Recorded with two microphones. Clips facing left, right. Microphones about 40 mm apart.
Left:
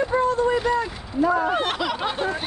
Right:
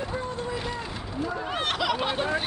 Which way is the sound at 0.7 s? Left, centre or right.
Left.